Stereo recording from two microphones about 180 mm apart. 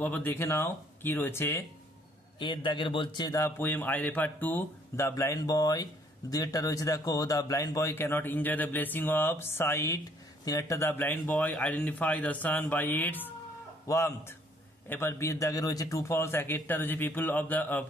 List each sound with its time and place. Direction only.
0.0 s a man's voice: 10° left (ahead or behind)
2.3 s a man's voice: 25° left (ahead or behind); by 17.8 s 10° left (ahead or behind)